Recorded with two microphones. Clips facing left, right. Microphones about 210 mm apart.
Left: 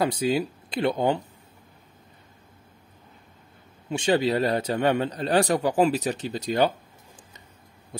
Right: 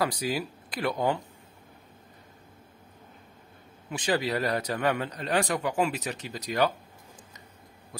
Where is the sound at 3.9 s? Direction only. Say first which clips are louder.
Left 5 dB; 25° left (ahead or behind).